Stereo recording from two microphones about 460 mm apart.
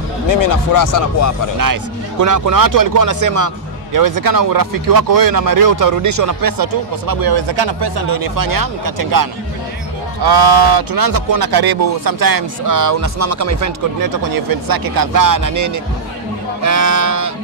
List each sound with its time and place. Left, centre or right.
0.3 s speech: left
1.6 s speech: right